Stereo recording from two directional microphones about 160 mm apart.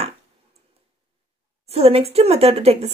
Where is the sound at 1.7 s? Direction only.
40° right (ahead or behind).